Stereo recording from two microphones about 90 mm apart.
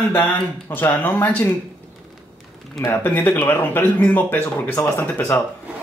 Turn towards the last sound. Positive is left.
turn(degrees=20)  # may be behind; listen again after turning